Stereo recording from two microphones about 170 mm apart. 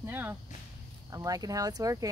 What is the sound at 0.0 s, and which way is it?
Speech, 10° right (ahead or behind).